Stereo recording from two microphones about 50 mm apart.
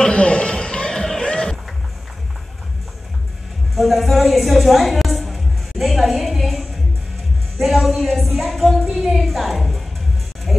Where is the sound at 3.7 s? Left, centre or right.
Centre.